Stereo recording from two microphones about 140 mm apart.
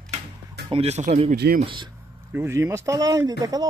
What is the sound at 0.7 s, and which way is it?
Speech, 50° right (ahead or behind).